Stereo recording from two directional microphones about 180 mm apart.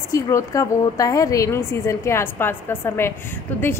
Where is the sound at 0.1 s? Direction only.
15° left (ahead or behind).